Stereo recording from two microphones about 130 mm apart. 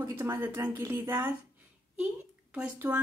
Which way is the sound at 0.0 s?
20° right (ahead or behind).